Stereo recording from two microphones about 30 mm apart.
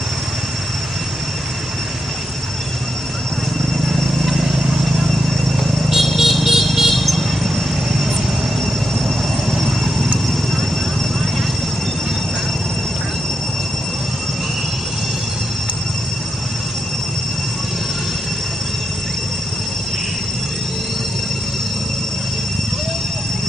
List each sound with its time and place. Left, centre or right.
3.9 s a sound: centre
5.6 s vehicle: centre
7.4 s train: centre
9.5 s vehicle: centre